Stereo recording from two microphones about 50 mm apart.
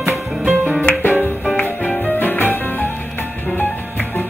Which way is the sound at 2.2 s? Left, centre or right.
Left.